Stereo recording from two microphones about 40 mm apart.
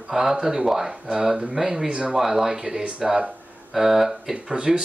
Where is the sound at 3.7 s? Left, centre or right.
Centre.